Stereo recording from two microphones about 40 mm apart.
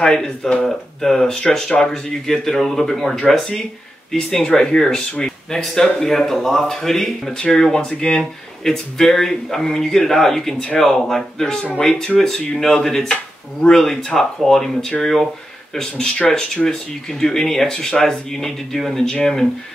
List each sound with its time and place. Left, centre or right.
0.0 s speech: centre
16.2 s speech: left